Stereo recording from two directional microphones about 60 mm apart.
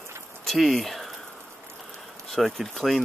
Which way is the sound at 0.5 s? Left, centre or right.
Centre.